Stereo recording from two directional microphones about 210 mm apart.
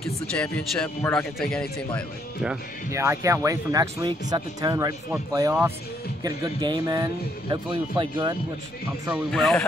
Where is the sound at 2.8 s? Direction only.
15° right (ahead or behind).